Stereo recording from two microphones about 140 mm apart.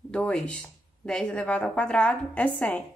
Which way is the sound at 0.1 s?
10° left (ahead or behind).